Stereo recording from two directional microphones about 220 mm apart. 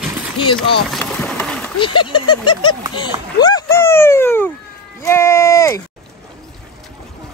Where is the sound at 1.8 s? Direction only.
20° left (ahead or behind).